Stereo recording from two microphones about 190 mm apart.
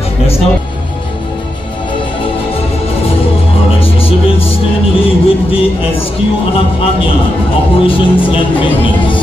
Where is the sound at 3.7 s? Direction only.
30° left (ahead or behind).